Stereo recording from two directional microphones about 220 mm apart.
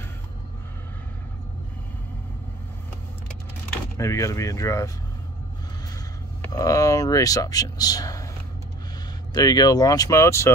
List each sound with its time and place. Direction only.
3.9 s speech: 15° left (ahead or behind)
6.4 s speech: 15° left (ahead or behind)
9.3 s speech: 15° left (ahead or behind)